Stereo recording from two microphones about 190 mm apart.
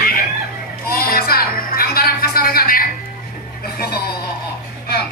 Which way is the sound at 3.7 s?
55° left (ahead or behind).